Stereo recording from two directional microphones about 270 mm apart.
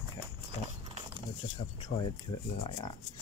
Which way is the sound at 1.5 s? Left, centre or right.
Centre.